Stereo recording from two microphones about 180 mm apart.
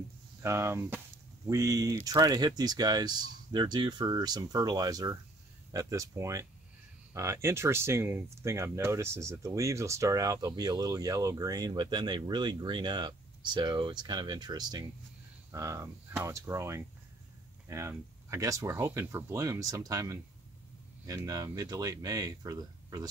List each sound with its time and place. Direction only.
0.4 s speech: 15° right (ahead or behind)